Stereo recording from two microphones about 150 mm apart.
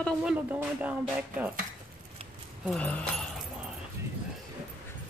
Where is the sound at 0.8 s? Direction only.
10° right (ahead or behind).